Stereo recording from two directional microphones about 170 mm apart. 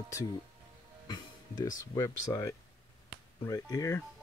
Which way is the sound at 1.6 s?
20° left (ahead or behind).